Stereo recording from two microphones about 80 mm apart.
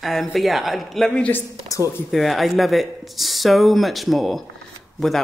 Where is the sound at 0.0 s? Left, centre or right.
Centre.